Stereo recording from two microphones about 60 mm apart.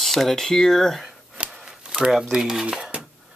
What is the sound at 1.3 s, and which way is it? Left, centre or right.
Chopping, centre.